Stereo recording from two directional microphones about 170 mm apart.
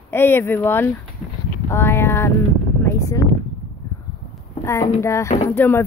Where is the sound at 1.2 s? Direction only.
5° left (ahead or behind).